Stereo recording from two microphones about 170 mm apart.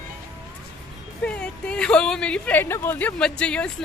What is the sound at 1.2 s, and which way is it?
A woman's voice, 5° left (ahead or behind).